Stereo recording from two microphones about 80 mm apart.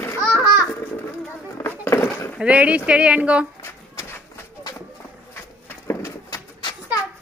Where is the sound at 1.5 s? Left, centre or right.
Left.